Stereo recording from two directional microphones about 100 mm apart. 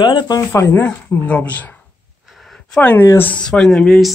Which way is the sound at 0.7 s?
15° left (ahead or behind).